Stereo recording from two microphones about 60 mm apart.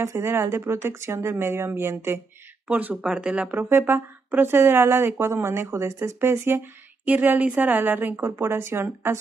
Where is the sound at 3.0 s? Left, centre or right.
Centre.